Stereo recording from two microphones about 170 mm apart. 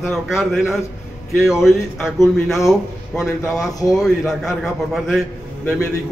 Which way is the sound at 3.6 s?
20° left (ahead or behind).